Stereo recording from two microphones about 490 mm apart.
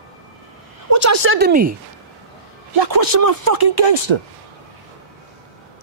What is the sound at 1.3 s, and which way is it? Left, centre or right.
Speech, centre.